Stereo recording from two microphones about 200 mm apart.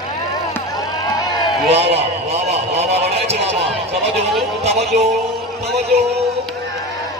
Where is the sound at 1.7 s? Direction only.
30° right (ahead or behind).